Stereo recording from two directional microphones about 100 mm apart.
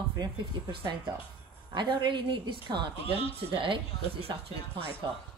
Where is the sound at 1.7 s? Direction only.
50° right (ahead or behind).